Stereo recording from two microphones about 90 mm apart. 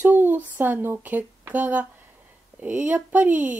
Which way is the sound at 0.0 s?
20° right (ahead or behind).